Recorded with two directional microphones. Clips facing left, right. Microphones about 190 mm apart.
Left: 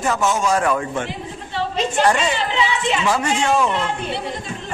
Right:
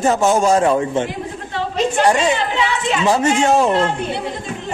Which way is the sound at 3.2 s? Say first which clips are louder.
Right 4 dB; 40° right (ahead or behind).